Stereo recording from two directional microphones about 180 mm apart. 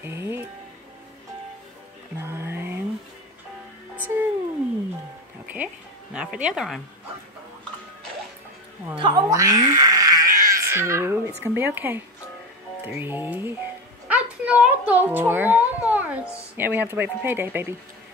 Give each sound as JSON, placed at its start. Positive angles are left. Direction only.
{"t": 0.0, "sound": "speech", "side_deg": -15}
{"t": 2.1, "sound": "music", "side_deg": -15}
{"t": 3.9, "sound": "music", "side_deg": -10}
{"t": 6.1, "sound": "speech", "side_deg": -5}
{"t": 8.9, "sound": "a child's voice", "side_deg": -25}